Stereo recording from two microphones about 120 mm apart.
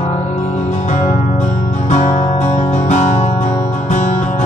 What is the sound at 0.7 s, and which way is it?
Music, 80° left.